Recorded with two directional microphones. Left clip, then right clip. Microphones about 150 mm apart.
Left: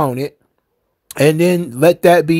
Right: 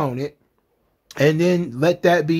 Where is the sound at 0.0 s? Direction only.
50° left (ahead or behind).